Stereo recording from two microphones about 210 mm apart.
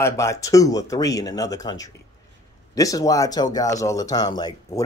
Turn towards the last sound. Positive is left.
turn(degrees=20)  # may be behind; listen again after turning